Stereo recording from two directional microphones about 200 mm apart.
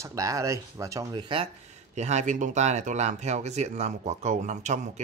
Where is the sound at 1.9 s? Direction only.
35° right (ahead or behind).